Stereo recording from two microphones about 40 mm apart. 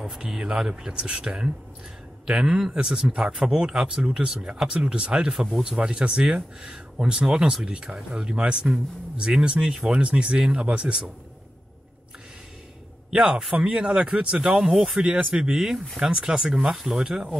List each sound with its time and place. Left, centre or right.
0.3 s speech: centre
13.1 s speech: right
14.5 s speech: centre